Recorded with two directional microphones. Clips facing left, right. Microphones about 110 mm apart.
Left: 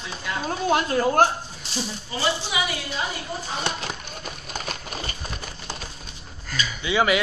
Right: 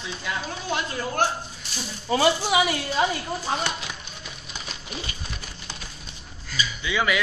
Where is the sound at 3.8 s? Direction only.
45° left (ahead or behind).